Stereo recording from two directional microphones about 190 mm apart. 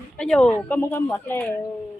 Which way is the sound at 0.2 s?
5° left (ahead or behind).